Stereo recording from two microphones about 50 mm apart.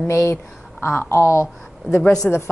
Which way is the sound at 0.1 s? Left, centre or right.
Left.